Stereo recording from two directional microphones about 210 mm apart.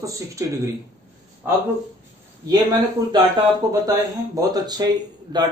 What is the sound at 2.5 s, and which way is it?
A man's voice, 20° right (ahead or behind).